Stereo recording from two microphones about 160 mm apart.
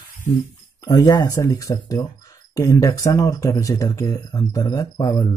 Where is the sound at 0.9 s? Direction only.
25° left (ahead or behind).